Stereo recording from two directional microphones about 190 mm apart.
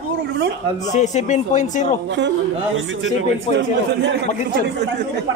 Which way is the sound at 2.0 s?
70° right (ahead or behind).